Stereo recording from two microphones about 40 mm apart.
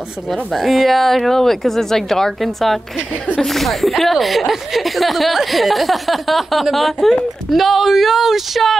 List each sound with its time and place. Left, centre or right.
0.3 s speech: centre